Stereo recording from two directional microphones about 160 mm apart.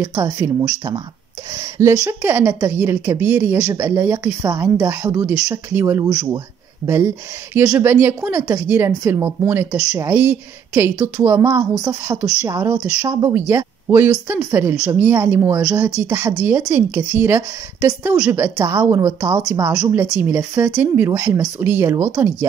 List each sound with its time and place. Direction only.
0.0 s a woman's voice: 15° right (ahead or behind)
7.5 s a woman's voice: 15° right (ahead or behind)
18.1 s a woman's voice: 5° right (ahead or behind)
18.4 s a woman's voice: 15° right (ahead or behind)